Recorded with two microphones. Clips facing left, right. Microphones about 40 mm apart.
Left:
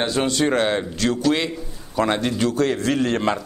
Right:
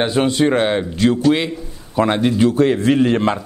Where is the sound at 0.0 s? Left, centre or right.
Centre.